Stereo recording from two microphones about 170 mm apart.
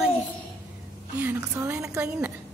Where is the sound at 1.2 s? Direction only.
15° right (ahead or behind).